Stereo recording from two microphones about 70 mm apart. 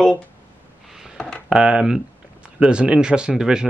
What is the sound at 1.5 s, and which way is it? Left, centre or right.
Speech, centre.